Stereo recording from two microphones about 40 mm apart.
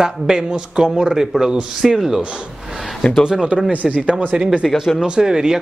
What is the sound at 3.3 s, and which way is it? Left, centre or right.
Speech, centre.